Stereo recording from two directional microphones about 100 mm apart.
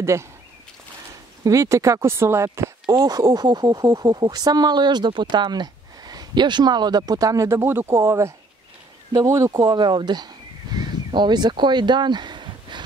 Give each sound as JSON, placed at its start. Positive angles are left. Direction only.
{"t": 0.0, "sound": "speech", "side_deg": -30}
{"t": 1.4, "sound": "speech", "side_deg": -30}
{"t": 3.0, "sound": "speech", "side_deg": -40}